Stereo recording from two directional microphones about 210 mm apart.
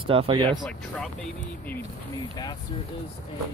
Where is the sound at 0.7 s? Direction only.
5° left (ahead or behind).